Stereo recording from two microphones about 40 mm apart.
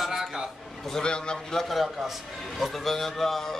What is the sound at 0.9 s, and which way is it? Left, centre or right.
Speech, centre.